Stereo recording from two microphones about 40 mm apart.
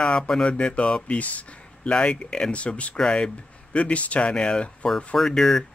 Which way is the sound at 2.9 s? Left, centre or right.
Centre.